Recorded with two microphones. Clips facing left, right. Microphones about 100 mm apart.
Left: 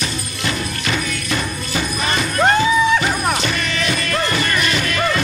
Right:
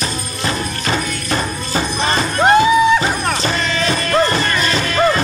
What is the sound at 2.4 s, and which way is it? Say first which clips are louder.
Music: right 4 dB; 20° right (ahead or behind).